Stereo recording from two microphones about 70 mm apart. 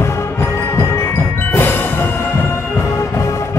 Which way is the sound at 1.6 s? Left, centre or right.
Left.